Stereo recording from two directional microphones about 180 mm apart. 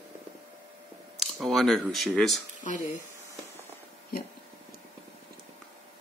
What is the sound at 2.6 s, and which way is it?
Speech, 45° left (ahead or behind).